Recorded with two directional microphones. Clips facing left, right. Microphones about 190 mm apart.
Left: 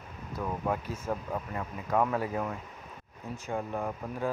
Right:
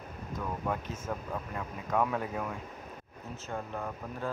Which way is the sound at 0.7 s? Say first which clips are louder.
Left 4 dB; 10° left (ahead or behind).